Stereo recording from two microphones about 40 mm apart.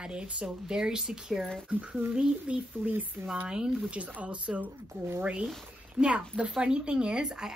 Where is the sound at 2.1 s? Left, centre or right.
Right.